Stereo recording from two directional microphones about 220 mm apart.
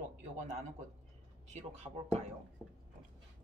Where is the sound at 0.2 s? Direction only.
35° right (ahead or behind).